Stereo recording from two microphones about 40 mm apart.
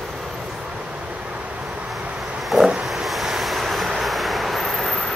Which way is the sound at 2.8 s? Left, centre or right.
Centre.